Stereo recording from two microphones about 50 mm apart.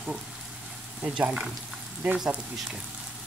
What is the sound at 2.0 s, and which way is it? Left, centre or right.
Speech, centre.